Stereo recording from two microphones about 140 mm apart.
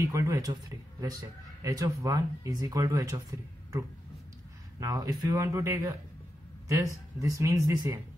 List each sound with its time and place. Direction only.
0.0 s a man's voice: 20° right (ahead or behind)
4.7 s a man's voice: 25° right (ahead or behind)
7.2 s a man's voice: 25° right (ahead or behind)